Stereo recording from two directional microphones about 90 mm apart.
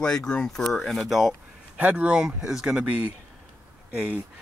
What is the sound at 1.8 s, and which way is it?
Speech, 15° right (ahead or behind).